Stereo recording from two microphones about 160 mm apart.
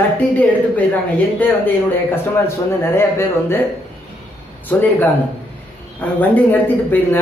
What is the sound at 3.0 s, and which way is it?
Speech, 15° left (ahead or behind).